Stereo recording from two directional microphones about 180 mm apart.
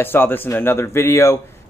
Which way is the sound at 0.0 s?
10° left (ahead or behind).